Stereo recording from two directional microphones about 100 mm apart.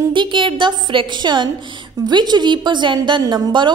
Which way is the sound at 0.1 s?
55° right (ahead or behind).